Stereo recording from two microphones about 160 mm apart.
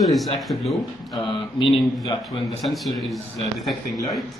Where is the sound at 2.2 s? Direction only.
Centre (ahead or behind).